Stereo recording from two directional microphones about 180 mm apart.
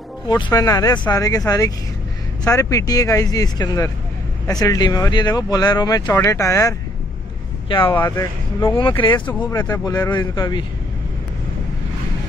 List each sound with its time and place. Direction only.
0.3 s speech: 20° left (ahead or behind)
7.9 s speech: 15° left (ahead or behind)
9.2 s speech: 10° left (ahead or behind)
9.6 s speech: 20° left (ahead or behind)